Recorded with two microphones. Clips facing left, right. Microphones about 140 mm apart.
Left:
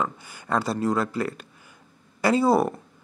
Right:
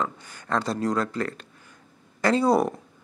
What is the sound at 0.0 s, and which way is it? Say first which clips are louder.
Speech: left 1 dB; 10° left (ahead or behind).